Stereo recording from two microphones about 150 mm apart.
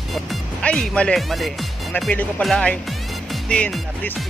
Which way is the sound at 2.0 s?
10° left (ahead or behind).